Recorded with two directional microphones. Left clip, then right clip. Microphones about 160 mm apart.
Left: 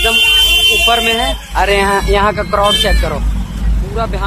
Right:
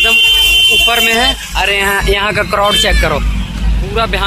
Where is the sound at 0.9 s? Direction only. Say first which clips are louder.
Right 3 dB; 10° right (ahead or behind).